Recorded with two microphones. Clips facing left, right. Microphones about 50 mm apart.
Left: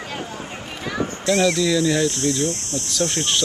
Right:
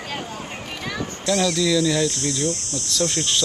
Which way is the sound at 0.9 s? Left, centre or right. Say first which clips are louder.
Left 3 dB; left.